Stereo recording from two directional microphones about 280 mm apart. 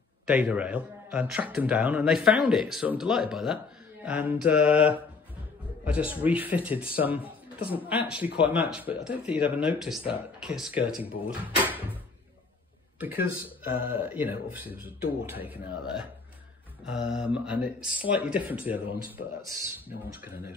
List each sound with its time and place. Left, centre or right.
0.3 s speech: centre
7.5 s speech: centre
8.1 s speech: centre
13.3 s speech: centre